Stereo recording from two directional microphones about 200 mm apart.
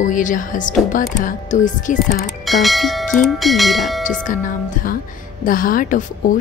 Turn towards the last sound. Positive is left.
turn(degrees=40)  # may be behind; listen again after turning